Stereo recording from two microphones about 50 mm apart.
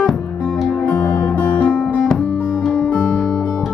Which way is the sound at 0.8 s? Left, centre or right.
Left.